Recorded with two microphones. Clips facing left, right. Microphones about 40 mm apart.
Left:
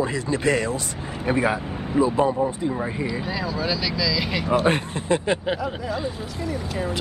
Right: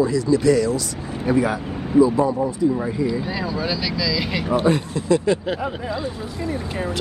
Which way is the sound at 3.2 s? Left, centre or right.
Centre.